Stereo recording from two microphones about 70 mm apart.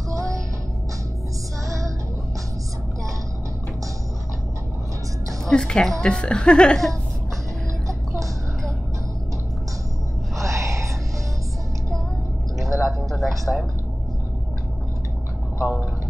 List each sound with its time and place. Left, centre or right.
0.1 s music: right
5.4 s a woman's voice: centre
10.4 s whispering: right
12.6 s a sound: centre